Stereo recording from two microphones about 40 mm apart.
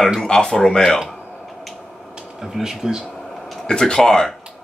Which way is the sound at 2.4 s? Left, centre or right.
Centre.